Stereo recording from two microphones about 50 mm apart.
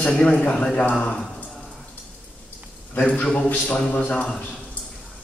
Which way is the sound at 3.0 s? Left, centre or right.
Left.